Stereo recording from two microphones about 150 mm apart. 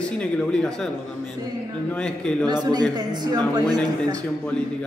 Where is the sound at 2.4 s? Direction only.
25° right (ahead or behind).